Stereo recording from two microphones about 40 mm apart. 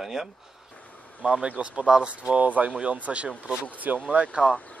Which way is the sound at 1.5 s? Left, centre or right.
Right.